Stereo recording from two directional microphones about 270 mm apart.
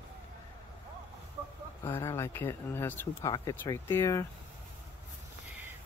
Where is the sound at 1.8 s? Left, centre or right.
Centre.